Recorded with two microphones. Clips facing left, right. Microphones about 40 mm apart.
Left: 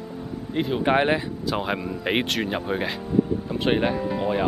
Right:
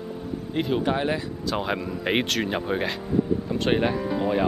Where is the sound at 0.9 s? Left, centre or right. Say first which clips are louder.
Left 4 dB; left.